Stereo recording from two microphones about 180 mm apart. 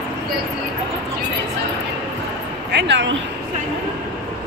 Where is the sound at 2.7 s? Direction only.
75° right (ahead or behind).